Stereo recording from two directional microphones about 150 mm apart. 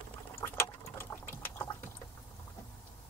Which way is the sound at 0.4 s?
15° left (ahead or behind).